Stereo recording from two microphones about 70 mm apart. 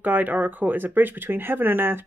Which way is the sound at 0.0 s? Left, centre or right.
Right.